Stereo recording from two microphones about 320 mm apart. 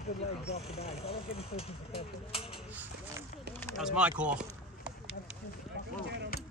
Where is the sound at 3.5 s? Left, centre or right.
Centre.